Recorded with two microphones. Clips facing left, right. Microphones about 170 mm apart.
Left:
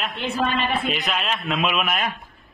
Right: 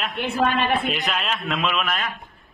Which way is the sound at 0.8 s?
Centre (ahead or behind).